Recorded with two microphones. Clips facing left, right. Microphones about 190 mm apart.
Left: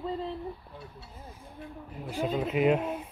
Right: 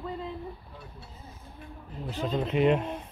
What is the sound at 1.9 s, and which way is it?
Speech, 10° left (ahead or behind).